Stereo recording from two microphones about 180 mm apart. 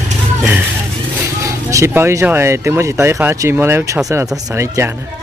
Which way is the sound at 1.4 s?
15° right (ahead or behind).